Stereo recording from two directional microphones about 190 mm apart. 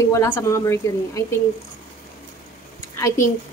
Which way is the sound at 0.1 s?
15° left (ahead or behind).